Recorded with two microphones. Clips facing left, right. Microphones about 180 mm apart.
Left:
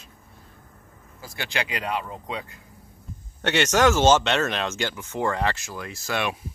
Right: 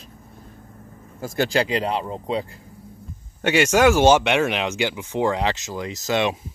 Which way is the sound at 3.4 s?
10° right (ahead or behind).